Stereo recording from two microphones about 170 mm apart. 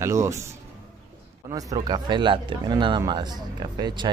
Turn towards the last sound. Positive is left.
turn(degrees=-25)  # may be behind; listen again after turning